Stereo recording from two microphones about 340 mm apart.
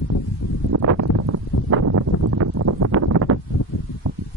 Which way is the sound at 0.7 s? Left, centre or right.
Right.